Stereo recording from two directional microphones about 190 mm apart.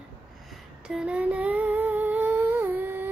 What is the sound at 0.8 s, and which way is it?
Humming, 5° right (ahead or behind).